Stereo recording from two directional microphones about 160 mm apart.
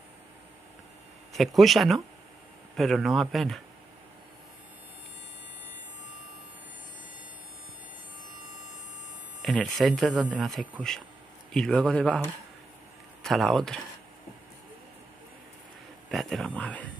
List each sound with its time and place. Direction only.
1.3 s speech: centre (ahead or behind)
9.4 s a man's voice: centre (ahead or behind)
13.2 s speech: centre (ahead or behind)
16.1 s speech: centre (ahead or behind)